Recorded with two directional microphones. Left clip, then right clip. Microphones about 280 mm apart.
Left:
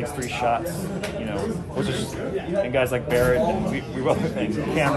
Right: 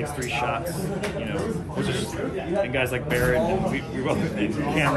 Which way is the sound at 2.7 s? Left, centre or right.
Left.